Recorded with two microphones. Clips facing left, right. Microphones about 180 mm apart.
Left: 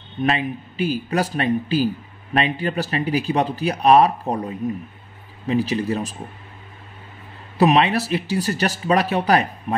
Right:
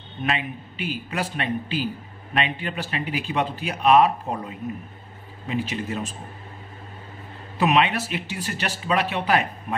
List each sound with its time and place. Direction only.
0.2 s speech: 40° left (ahead or behind)
5.5 s speech: 35° left (ahead or behind)
7.5 s speech: 35° left (ahead or behind)